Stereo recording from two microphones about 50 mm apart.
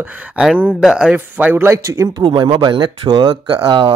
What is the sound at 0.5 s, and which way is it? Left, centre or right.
Speech, right.